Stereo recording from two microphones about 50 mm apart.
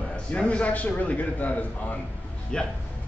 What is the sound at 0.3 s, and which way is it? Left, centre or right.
A man's voice, left.